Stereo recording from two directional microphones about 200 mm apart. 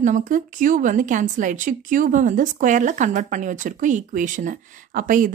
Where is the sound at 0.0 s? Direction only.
40° right (ahead or behind).